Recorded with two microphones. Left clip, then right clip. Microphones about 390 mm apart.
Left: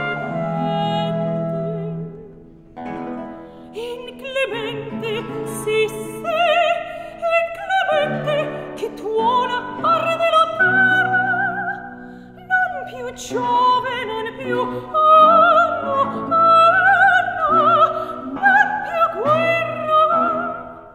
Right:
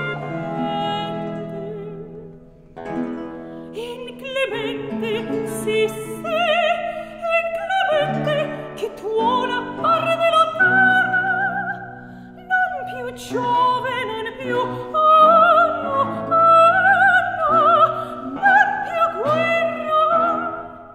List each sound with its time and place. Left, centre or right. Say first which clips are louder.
0.6 s music: left 1 dB; centre
3.7 s music: left 3 dB; centre
18.4 s opera: even; centre